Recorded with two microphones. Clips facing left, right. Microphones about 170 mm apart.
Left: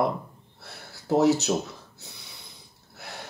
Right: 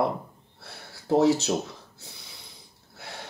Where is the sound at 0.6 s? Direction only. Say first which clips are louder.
Even; 30° right (ahead or behind).